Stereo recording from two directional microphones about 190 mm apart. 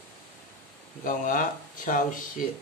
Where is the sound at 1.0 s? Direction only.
45° left (ahead or behind).